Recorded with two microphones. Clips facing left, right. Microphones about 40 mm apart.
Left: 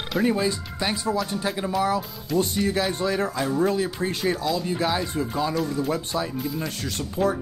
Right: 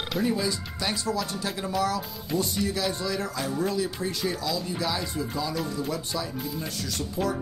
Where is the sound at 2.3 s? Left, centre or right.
Left.